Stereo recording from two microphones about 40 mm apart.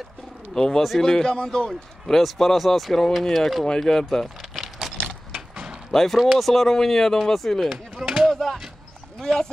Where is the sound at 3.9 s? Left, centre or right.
Centre.